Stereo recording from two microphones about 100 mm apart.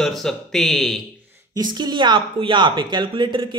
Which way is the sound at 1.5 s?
45° right (ahead or behind).